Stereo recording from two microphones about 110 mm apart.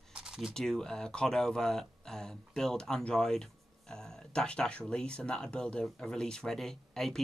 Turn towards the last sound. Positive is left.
turn(degrees=5)  # may be behind; listen again after turning